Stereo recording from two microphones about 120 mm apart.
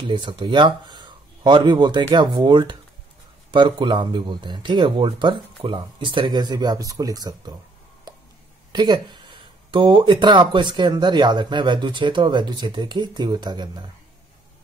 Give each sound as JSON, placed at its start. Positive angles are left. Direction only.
{"t": 0.1, "sound": "speech", "side_deg": -40}
{"t": 8.7, "sound": "speech", "side_deg": -40}